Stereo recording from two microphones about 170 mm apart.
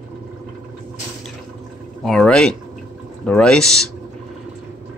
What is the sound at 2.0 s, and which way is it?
Speech, 5° left (ahead or behind).